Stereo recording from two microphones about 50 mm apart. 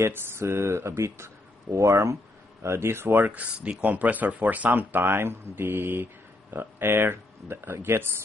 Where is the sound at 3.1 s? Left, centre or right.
Right.